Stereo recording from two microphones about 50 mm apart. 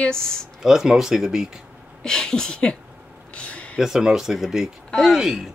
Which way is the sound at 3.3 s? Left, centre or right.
Left.